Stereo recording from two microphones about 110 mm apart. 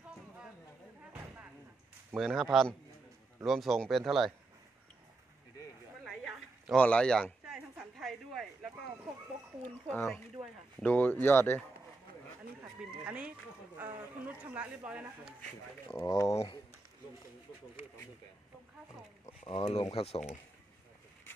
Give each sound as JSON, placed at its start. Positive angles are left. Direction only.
{"t": 2.1, "sound": "speech", "side_deg": 0}
{"t": 6.0, "sound": "a sound", "side_deg": 0}
{"t": 6.8, "sound": "a sound", "side_deg": 10}
{"t": 9.6, "sound": "speech", "side_deg": 10}
{"t": 13.0, "sound": "speech", "side_deg": -10}
{"t": 15.9, "sound": "speech", "side_deg": 30}
{"t": 19.4, "sound": "speech", "side_deg": 60}